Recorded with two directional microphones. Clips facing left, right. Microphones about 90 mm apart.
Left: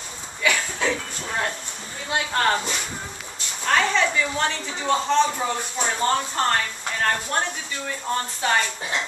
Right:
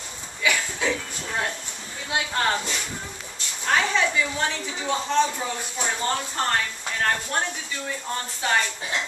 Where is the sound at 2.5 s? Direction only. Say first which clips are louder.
Left 2 dB; 15° left (ahead or behind).